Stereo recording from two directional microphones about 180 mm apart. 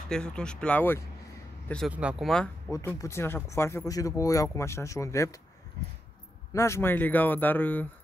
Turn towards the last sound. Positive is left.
turn(degrees=10)  # may be behind; listen again after turning